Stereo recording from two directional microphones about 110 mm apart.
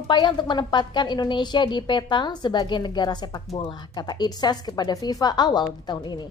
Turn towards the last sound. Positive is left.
turn(degrees=40)  # may be behind; listen again after turning